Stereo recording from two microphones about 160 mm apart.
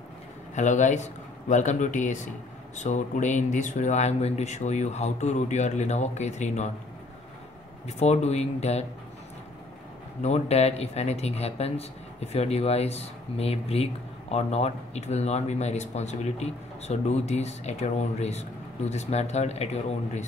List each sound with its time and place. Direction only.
0.6 s speech: 50° left (ahead or behind)
7.8 s speech: 45° left (ahead or behind)
10.2 s speech: 40° left (ahead or behind)